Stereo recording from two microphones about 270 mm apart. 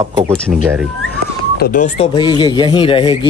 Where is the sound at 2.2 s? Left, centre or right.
Centre.